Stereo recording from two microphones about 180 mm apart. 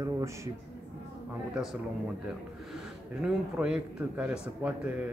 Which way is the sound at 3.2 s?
5° right (ahead or behind).